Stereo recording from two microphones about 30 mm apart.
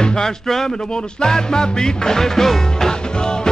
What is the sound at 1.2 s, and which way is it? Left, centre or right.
Music, left.